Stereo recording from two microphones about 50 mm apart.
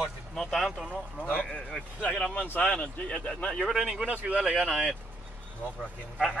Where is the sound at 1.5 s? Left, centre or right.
Centre.